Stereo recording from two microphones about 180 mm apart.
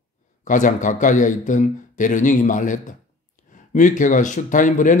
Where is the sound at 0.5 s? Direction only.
45° left (ahead or behind).